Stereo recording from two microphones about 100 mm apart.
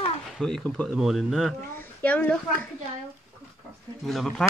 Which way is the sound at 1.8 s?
15° left (ahead or behind).